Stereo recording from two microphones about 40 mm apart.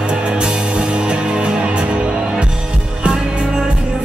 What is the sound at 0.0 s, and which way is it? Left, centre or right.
Music, right.